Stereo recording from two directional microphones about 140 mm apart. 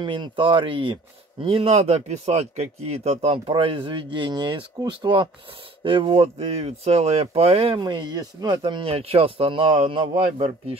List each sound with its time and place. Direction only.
0.0 s speech: 35° right (ahead or behind)
7.8 s speech: 35° right (ahead or behind)